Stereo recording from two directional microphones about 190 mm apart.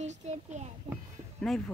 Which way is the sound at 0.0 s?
35° right (ahead or behind).